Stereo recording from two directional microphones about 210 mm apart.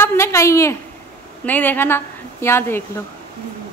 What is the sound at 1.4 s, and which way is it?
A woman's voice, 10° left (ahead or behind).